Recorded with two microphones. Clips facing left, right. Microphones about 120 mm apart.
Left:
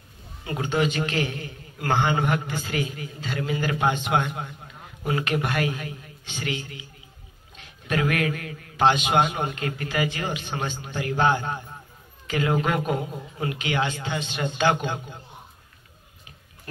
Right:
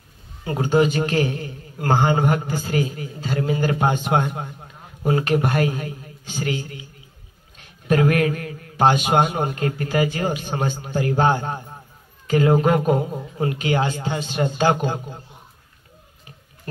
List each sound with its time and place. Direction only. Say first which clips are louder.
0.5 s a man's voice: right 6 dB; 35° right (ahead or behind)
7.9 s a man's voice: right 6 dB; 40° right (ahead or behind)